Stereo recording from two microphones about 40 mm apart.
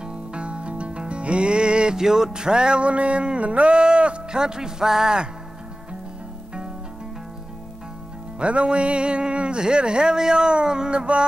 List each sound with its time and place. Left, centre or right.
0.0 s music: right
2.0 s music: centre
8.4 s music: right